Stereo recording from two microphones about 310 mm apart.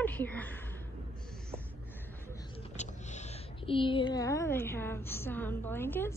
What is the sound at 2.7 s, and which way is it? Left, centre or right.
A woman's voice, left.